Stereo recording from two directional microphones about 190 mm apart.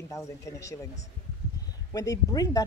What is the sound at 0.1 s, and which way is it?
Speech, 15° left (ahead or behind).